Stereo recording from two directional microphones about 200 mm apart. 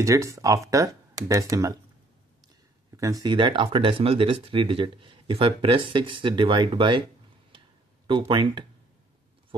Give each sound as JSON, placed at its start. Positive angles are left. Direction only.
{"t": 0.0, "sound": "speech", "side_deg": -15}
{"t": 3.0, "sound": "speech", "side_deg": -20}
{"t": 8.1, "sound": "speech", "side_deg": -25}